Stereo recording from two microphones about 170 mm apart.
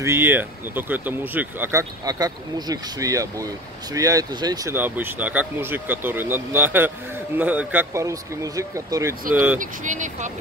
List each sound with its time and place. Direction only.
0.0 s speech: 15° right (ahead or behind)
9.6 s speech: 45° right (ahead or behind)